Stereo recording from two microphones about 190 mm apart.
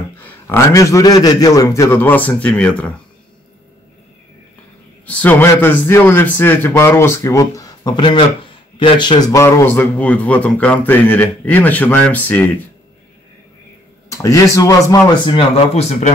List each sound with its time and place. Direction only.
0.2 s a man's voice: 10° left (ahead or behind)
5.0 s a man's voice: 10° left (ahead or behind)
14.0 s speech: 15° left (ahead or behind); by 16.1 s 35° left (ahead or behind)